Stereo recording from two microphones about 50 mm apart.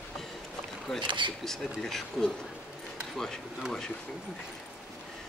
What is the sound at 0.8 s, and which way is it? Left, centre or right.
A man's voice, centre.